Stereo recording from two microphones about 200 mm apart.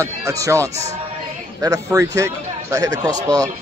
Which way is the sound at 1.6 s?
15° right (ahead or behind).